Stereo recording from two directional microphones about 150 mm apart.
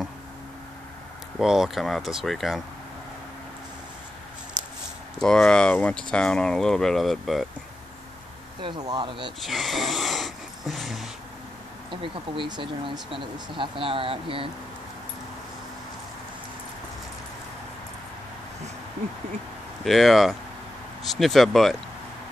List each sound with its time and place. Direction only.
1.4 s speech: 5° right (ahead or behind)
5.2 s speech: 5° left (ahead or behind)
8.5 s speech: 30° right (ahead or behind)
9.4 s dog: centre (ahead or behind)
11.9 s speech: 35° right (ahead or behind)
19.8 s speech: centre (ahead or behind)